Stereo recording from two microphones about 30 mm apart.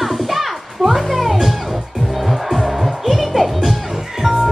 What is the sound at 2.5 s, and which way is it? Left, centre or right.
Music, centre.